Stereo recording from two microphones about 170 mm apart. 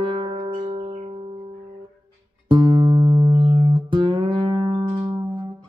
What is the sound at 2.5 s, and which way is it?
Music, 25° right (ahead or behind).